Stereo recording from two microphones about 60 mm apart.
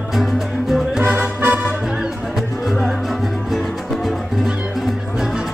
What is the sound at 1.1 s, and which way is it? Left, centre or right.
Music, right.